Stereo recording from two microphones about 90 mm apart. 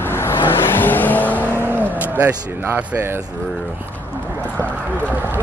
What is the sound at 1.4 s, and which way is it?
Cattle, 20° right (ahead or behind).